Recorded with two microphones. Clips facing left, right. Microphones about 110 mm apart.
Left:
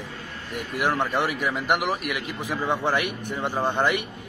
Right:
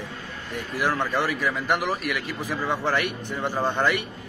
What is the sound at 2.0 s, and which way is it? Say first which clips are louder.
Speech: right 1 dB; 55° left (ahead or behind).